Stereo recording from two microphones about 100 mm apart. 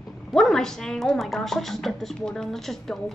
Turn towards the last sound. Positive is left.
turn(degrees=5)  # may be behind; listen again after turning